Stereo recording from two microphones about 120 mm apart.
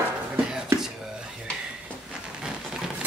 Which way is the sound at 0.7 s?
25° right (ahead or behind).